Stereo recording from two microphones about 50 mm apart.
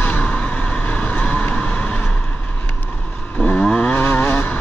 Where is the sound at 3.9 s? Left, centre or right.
Left.